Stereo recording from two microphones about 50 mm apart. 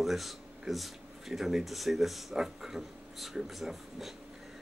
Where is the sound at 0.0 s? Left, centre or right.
Centre.